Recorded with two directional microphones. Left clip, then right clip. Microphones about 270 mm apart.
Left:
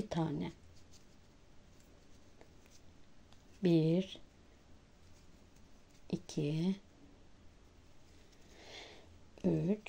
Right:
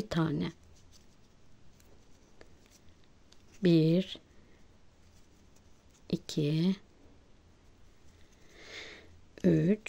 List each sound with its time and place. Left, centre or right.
0.0 s speech: right
3.6 s speech: right
6.0 s speech: right
8.5 s sniff: centre